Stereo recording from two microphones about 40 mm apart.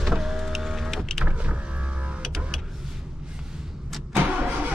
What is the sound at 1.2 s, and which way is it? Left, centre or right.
Power windows, right.